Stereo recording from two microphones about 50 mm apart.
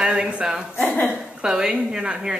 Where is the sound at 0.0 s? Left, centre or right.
Centre.